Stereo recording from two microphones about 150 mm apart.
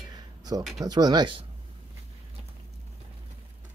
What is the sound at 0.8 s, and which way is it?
Speech, 25° right (ahead or behind).